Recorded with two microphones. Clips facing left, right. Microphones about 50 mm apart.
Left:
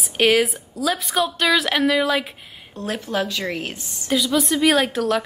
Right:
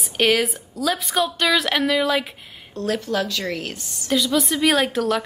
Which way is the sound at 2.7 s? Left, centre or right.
Centre.